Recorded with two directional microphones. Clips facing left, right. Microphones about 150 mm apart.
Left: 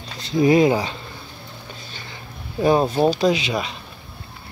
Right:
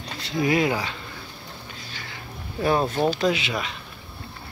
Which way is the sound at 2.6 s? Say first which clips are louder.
Left 5 dB; 20° left (ahead or behind).